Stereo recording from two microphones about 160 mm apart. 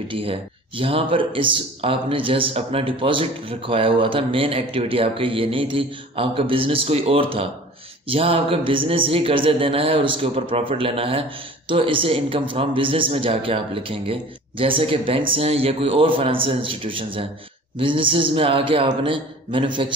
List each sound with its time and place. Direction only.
0.1 s speech: 35° right (ahead or behind)